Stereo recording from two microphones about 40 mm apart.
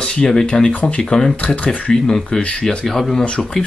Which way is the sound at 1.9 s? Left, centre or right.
Centre.